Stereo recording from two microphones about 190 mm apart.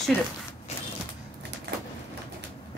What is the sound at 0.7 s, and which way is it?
Creak, 35° left (ahead or behind).